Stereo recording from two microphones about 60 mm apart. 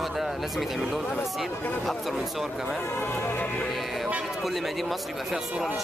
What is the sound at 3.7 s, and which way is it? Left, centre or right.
Music, centre.